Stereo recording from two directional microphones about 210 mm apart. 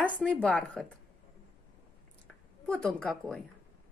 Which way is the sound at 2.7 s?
5° left (ahead or behind).